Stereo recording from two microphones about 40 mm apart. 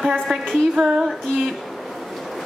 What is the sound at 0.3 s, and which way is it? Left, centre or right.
Speech, centre.